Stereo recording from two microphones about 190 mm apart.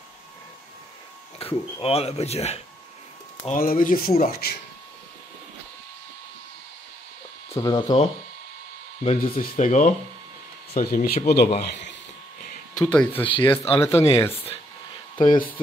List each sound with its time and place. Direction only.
1.4 s speech: 30° left (ahead or behind)
3.4 s speech: 50° left (ahead or behind)
7.5 s speech: 20° left (ahead or behind)
9.2 s speech: 45° left (ahead or behind)
10.7 s speech: 50° left (ahead or behind); by 12.0 s 65° left (ahead or behind)
12.8 s speech: 5° left (ahead or behind)
13.2 s speech: 25° left (ahead or behind)
15.2 s speech: 45° left (ahead or behind)